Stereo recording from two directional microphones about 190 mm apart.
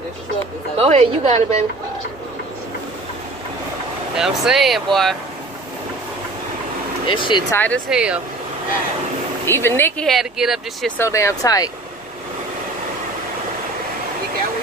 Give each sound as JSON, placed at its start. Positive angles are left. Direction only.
{"t": 0.7, "sound": "a woman's voice", "side_deg": -35}
{"t": 4.2, "sound": "speech", "side_deg": 0}
{"t": 7.1, "sound": "speech", "side_deg": 25}
{"t": 7.5, "sound": "speech", "side_deg": 10}
{"t": 7.9, "sound": "speech", "side_deg": -5}
{"t": 9.5, "sound": "speech", "side_deg": 15}
{"t": 11.0, "sound": "speech", "side_deg": 15}